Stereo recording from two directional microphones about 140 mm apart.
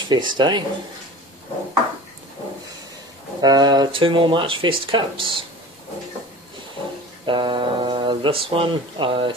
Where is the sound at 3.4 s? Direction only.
30° right (ahead or behind).